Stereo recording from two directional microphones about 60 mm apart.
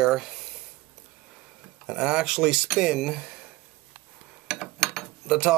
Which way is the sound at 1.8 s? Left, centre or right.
Centre.